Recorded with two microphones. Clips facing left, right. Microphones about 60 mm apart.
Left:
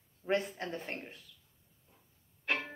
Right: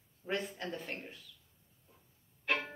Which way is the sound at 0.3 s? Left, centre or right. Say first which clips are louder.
Left 4 dB; left.